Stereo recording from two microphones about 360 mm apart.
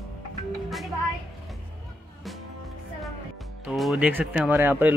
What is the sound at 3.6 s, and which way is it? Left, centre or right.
Speech, centre.